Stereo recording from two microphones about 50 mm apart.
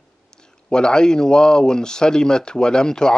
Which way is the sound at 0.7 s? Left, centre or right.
Centre.